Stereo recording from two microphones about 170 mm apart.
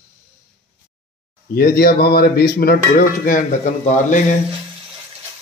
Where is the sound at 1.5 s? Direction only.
60° left (ahead or behind).